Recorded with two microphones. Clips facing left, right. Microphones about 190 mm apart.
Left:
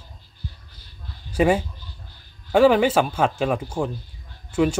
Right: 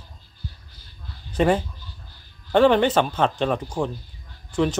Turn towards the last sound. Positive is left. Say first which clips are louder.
# left 2 dB
turn(degrees=10)  # may be behind; listen again after turning